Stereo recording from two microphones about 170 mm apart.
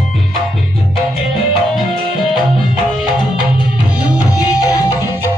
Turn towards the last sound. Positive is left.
turn(degrees=20)  # may be behind; listen again after turning